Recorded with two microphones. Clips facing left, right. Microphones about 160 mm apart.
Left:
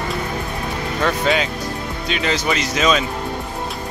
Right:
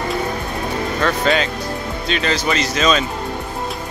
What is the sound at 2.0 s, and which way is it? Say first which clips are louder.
Speech: right 1 dB; 10° left (ahead or behind).